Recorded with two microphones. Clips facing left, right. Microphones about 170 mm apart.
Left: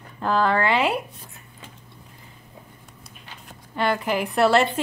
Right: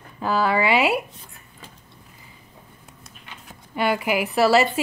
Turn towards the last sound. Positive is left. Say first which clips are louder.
# right 1 dB
turn(degrees=-5)  # may be behind; listen again after turning